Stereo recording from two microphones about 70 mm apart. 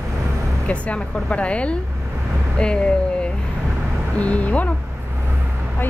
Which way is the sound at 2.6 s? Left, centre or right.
Centre.